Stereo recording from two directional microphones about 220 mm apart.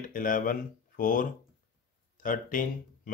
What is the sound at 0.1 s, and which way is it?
Speech, 40° left (ahead or behind).